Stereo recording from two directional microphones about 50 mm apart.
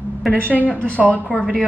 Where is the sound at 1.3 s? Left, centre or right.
Centre.